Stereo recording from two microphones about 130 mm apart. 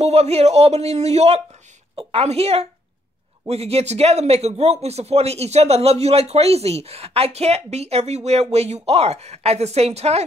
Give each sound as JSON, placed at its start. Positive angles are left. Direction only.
{"t": 0.0, "sound": "a man's voice", "side_deg": -55}